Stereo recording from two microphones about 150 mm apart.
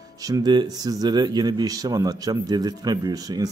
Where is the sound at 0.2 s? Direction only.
25° right (ahead or behind).